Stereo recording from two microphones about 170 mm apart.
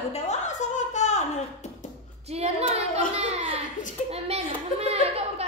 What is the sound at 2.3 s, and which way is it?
A child's voice, 35° right (ahead or behind).